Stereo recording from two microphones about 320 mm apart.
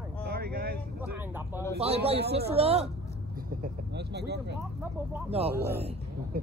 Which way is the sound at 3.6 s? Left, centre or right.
Right.